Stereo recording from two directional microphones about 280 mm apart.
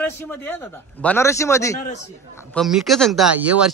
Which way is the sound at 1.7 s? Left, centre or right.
Left.